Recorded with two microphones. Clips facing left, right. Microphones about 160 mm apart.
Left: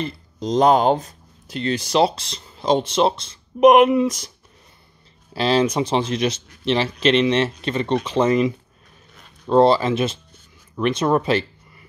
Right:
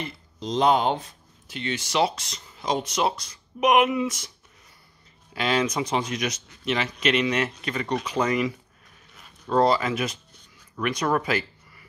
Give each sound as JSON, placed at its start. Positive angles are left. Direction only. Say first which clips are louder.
{"t": 0.0, "sound": "speech", "louder": "left 7 dB", "side_deg": 45}
{"t": 5.3, "sound": "speech", "louder": "left 6 dB", "side_deg": 30}